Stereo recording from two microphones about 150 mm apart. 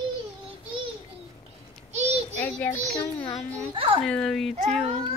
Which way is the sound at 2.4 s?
10° left (ahead or behind).